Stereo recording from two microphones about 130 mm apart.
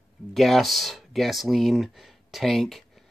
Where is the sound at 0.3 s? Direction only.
Centre (ahead or behind).